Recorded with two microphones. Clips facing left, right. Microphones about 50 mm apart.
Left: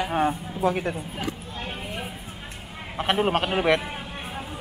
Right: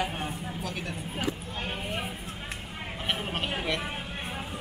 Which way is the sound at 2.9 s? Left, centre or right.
Left.